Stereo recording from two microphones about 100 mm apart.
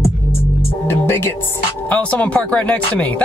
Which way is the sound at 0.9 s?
25° left (ahead or behind).